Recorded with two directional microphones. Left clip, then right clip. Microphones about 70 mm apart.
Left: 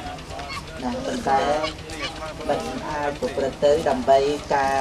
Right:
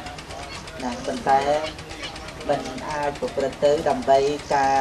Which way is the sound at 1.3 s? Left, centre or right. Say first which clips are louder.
Right 2 dB; right.